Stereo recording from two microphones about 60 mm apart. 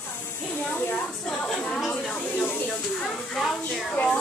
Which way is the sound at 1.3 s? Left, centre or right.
Centre.